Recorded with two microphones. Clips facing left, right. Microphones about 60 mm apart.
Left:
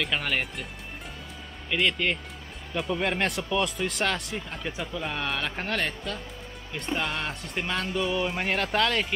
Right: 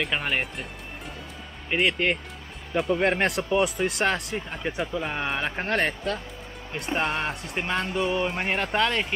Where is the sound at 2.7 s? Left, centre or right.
Centre.